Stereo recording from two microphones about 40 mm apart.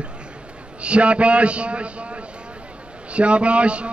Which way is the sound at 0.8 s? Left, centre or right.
Right.